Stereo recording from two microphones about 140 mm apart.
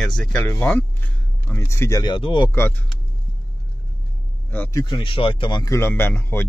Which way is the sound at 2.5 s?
15° left (ahead or behind).